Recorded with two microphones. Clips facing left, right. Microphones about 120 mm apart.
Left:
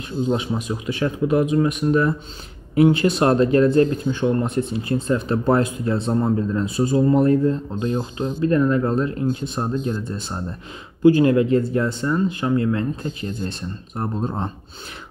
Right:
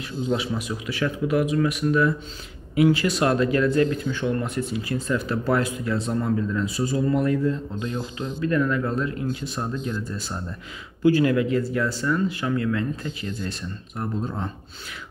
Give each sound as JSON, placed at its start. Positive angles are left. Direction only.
{"t": 0.4, "sound": "speech", "side_deg": 25}
{"t": 11.2, "sound": "speech", "side_deg": 30}